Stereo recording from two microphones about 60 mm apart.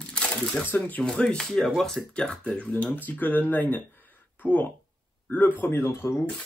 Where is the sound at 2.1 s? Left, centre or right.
Centre.